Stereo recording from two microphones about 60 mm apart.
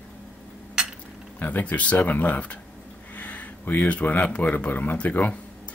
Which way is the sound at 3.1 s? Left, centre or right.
Left.